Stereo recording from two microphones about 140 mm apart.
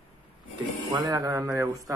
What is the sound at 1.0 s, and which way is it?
Speech, 25° right (ahead or behind).